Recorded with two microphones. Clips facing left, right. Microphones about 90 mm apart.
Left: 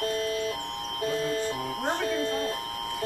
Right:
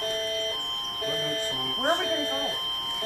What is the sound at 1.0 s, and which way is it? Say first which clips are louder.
Smoke detector: left 3 dB; 5° left (ahead or behind).